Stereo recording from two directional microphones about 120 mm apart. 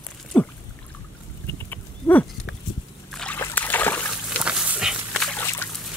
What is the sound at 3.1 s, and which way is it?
Splash, 5° left (ahead or behind).